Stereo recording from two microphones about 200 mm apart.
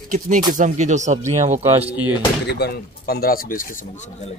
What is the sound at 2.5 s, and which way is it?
Speech, 55° left (ahead or behind).